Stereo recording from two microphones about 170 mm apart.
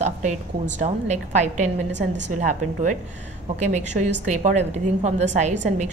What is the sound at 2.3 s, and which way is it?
Speech, 45° right (ahead or behind).